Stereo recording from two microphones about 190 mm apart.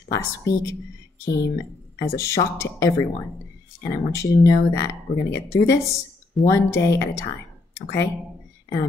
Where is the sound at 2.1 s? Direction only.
15° left (ahead or behind).